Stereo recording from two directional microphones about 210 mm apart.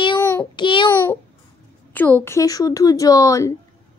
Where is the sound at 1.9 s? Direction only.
10° left (ahead or behind).